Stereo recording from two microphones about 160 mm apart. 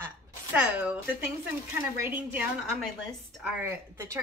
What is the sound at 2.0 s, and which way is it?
Speech, 10° right (ahead or behind).